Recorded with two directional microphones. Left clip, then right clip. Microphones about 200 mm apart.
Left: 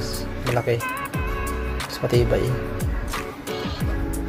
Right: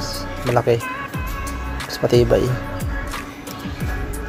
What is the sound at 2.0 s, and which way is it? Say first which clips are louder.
Music: right 6 dB; 30° right (ahead or behind).